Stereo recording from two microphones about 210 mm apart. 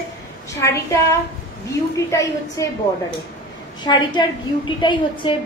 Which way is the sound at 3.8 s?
20° left (ahead or behind).